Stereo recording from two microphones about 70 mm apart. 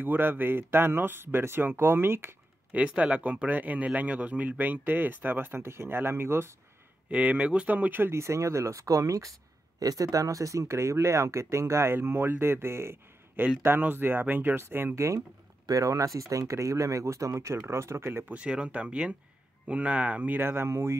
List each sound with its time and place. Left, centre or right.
0.0 s speech: right
2.7 s speech: centre; by 6.5 s right
7.1 s speech: centre
15.6 s speech: right
18.3 s speech: centre; by 20.9 s right